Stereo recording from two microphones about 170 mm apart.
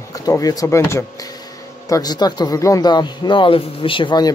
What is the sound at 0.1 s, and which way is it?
Speech, 20° left (ahead or behind).